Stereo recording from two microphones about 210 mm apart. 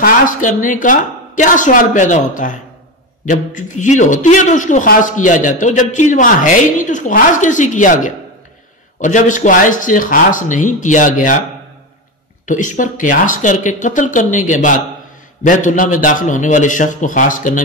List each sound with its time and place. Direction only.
0.0 s a man's voice: 40° left (ahead or behind)
12.4 s a man's voice: 40° left (ahead or behind)